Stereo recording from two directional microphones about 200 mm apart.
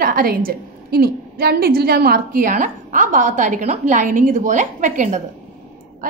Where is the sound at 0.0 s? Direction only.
45° right (ahead or behind).